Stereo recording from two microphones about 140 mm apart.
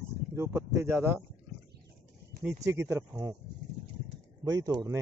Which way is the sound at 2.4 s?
20° right (ahead or behind).